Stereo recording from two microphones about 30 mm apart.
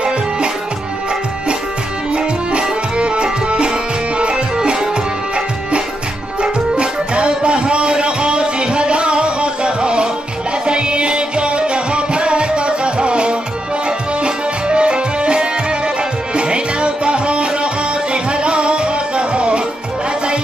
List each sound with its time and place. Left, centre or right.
2.1 s music: right
6.4 s music: right